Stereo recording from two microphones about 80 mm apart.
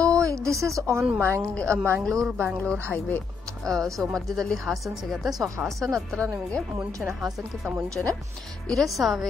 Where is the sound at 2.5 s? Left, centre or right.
Centre.